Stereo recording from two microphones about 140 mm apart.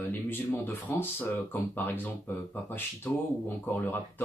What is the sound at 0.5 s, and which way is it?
Speech, 25° left (ahead or behind).